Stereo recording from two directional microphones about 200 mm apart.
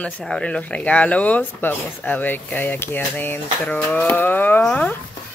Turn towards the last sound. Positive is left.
turn(degrees=10)  # may be behind; listen again after turning